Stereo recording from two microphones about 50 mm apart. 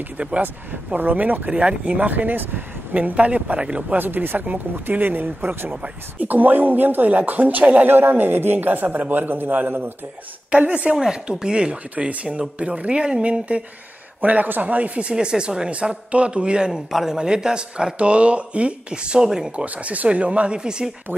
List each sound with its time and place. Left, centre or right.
0.2 s speech: right
1.5 s speech: right
2.9 s speech: right
4.0 s speech: right
7.9 s speech: right
10.5 s speech: right
11.0 s speech: centre
19.5 s speech: right